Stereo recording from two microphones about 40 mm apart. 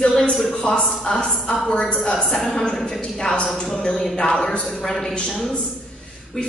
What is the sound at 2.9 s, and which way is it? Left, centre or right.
A woman's voice, centre.